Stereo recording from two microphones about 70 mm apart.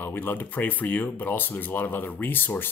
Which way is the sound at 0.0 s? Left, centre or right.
Left.